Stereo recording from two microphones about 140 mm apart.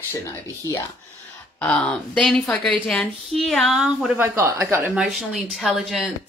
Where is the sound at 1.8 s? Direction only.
5° left (ahead or behind); by 5.0 s 15° right (ahead or behind).